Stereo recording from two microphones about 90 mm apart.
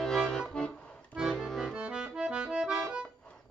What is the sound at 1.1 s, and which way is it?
Accordion, 5° right (ahead or behind).